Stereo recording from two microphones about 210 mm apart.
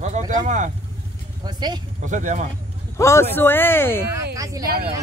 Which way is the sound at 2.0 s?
35° right (ahead or behind).